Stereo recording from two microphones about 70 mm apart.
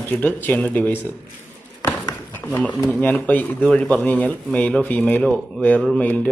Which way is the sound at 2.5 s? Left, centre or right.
Left.